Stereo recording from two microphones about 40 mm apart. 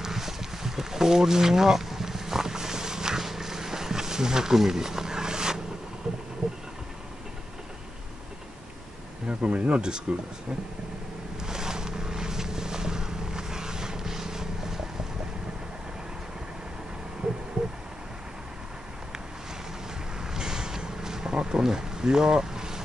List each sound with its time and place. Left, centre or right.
0.0 s a sound: centre
9.3 s speech: right
11.4 s boat: centre
20.2 s vehicle: centre